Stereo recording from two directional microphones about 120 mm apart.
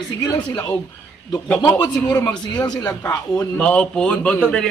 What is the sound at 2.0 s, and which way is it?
Speech, 20° left (ahead or behind).